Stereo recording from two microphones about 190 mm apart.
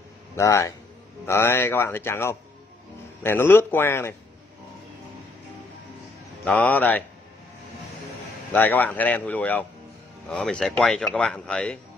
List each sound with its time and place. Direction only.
0.4 s speech: 15° left (ahead or behind)
6.4 s speech: 5° left (ahead or behind)
8.5 s speech: 10° left (ahead or behind)